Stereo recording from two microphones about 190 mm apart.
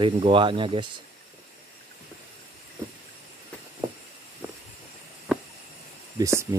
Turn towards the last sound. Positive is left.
turn(degrees=-15)  # may be behind; listen again after turning